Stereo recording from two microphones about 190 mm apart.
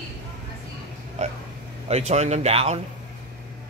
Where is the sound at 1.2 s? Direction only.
35° right (ahead or behind).